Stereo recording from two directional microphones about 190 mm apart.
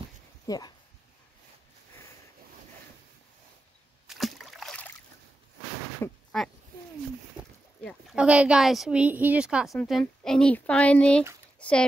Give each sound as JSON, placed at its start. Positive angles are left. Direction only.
{"t": 0.5, "sound": "speech", "side_deg": 20}
{"t": 4.1, "sound": "rowboat", "side_deg": 0}
{"t": 6.3, "sound": "speech", "side_deg": 5}
{"t": 7.4, "sound": "boat", "side_deg": -25}
{"t": 7.8, "sound": "speech", "side_deg": -5}